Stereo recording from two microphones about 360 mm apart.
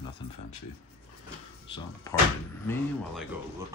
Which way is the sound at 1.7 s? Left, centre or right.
Centre.